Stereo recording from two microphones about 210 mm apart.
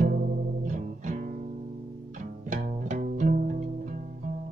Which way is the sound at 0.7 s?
35° right (ahead or behind).